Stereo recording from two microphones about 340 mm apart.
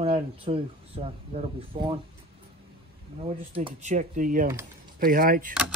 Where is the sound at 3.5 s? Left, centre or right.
Centre.